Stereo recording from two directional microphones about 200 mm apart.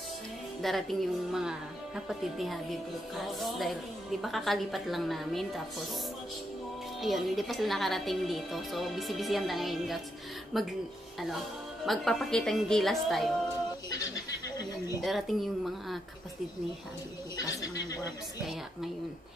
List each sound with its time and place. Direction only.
0.6 s speech: centre (ahead or behind)
7.0 s speech: centre (ahead or behind)
11.8 s speech: centre (ahead or behind)
13.8 s a sound: 20° left (ahead or behind)
15.0 s speech: centre (ahead or behind)
17.4 s speech: 20° left (ahead or behind)
18.4 s speech: centre (ahead or behind)